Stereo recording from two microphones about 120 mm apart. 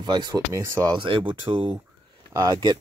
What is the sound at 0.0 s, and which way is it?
Speech, 35° right (ahead or behind).